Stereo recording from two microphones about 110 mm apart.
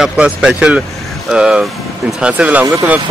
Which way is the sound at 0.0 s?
5° right (ahead or behind).